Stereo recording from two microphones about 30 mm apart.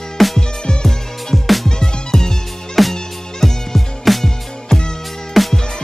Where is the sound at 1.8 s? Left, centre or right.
Centre.